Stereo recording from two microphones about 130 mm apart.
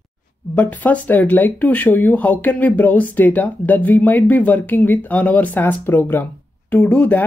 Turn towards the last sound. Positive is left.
turn(degrees=10)  # may be behind; listen again after turning